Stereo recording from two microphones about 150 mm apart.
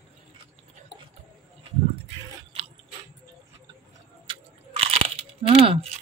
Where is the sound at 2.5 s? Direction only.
40° right (ahead or behind).